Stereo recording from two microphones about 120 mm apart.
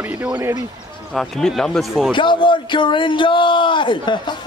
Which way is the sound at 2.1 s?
45° left (ahead or behind).